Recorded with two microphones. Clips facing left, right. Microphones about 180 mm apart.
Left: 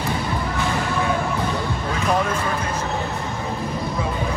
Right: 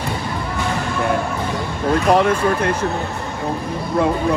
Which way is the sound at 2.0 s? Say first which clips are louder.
Right 6 dB; 65° right (ahead or behind).